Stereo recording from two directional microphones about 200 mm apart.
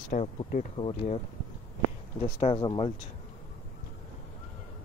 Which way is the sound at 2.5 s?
20° left (ahead or behind).